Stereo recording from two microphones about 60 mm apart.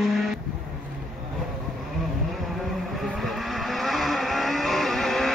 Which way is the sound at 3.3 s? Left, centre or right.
Centre.